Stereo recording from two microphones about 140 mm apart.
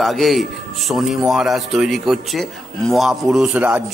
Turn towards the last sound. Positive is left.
turn(degrees=-5)  # may be behind; listen again after turning